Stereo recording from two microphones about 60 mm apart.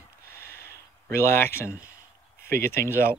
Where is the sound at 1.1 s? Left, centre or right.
Left.